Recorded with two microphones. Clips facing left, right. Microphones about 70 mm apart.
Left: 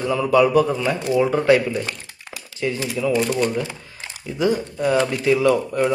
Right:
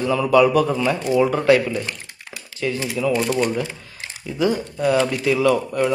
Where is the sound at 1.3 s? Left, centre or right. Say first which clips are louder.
Even; left.